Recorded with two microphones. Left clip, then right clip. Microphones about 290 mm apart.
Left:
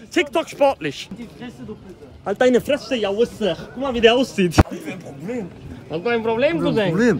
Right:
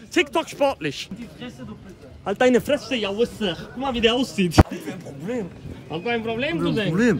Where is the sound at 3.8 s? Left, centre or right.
Centre.